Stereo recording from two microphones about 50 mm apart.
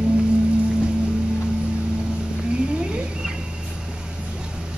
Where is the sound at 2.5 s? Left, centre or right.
Centre.